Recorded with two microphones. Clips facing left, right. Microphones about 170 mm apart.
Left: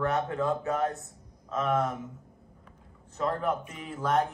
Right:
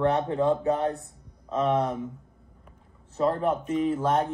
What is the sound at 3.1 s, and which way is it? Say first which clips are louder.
Speech: right 5 dB; 30° right (ahead or behind).